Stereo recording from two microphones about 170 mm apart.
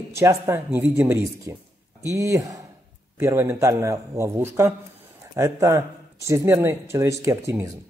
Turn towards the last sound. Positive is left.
turn(degrees=-15)  # may be behind; listen again after turning